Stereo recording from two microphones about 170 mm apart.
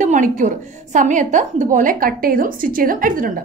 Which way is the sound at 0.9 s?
45° right (ahead or behind).